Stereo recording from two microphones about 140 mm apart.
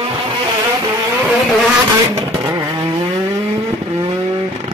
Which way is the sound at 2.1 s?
25° right (ahead or behind).